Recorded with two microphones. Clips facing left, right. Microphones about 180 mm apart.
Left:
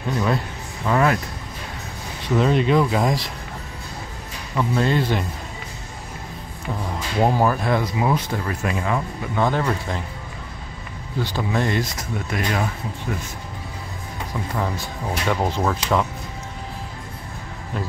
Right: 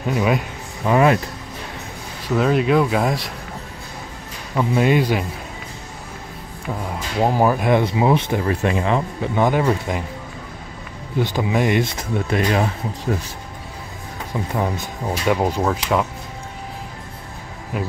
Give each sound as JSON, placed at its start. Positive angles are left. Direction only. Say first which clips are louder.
{"t": 0.1, "sound": "speech", "louder": "right 3 dB", "side_deg": -15}
{"t": 2.2, "sound": "speech", "louder": "right 1 dB", "side_deg": -5}
{"t": 4.6, "sound": "speech", "louder": "right 3 dB", "side_deg": -15}
{"t": 7.2, "sound": "speech", "louder": "right 2 dB", "side_deg": -10}
{"t": 9.4, "sound": "speech", "louder": "right 3 dB", "side_deg": -15}
{"t": 11.1, "sound": "speech", "louder": "right 4 dB", "side_deg": -15}
{"t": 11.8, "sound": "speech", "louder": "right 5 dB", "side_deg": -30}
{"t": 14.5, "sound": "speech", "louder": "right 3 dB", "side_deg": -20}